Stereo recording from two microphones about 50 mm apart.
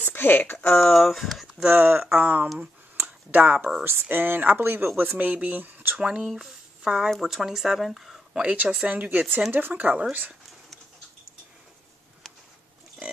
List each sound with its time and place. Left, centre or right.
0.0 s speech: left
0.9 s speech: centre
1.7 s speech: right
3.0 s a sound: right
3.8 s speech: right
5.1 s speech: right
5.9 s speech: centre
8.4 s speech: right
9.5 s speech: right